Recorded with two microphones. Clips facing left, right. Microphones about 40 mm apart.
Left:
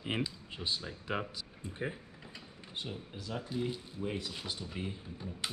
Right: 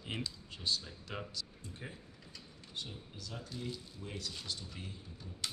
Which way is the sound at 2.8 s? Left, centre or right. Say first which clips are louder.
Left 4 dB; left.